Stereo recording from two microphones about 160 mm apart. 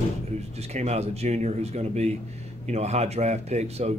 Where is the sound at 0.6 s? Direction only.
40° right (ahead or behind).